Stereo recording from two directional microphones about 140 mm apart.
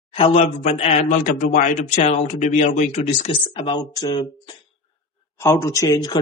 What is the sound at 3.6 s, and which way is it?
Speech, 30° left (ahead or behind).